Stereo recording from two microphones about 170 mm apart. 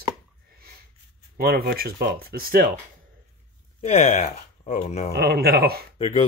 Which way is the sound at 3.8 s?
40° left (ahead or behind).